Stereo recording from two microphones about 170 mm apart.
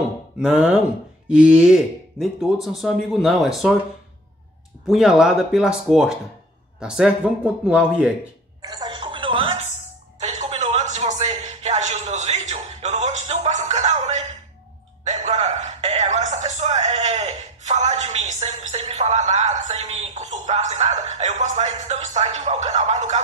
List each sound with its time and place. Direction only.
0.4 s speech: 5° right (ahead or behind)
4.8 s speech: 5° right (ahead or behind)
8.6 s a sound: 25° right (ahead or behind); by 14.2 s 40° right (ahead or behind)
15.0 s music: 40° right (ahead or behind)